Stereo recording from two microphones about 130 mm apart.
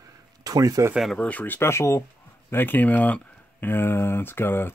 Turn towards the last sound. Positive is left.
turn(degrees=15)  # may be behind; listen again after turning